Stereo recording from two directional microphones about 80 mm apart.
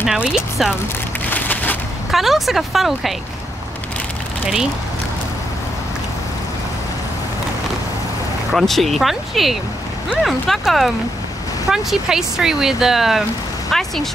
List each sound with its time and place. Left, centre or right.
0.0 s speech: centre
1.3 s a sound: left
2.0 s speech: centre
8.5 s speech: centre